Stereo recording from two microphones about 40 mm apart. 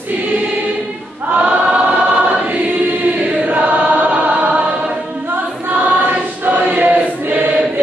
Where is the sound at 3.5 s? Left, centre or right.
Right.